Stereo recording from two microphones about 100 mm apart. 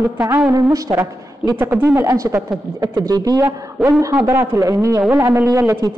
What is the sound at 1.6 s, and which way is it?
Speech, 20° right (ahead or behind).